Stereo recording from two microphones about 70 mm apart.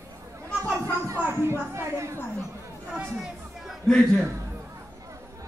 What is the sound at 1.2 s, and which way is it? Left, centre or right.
Speech, right.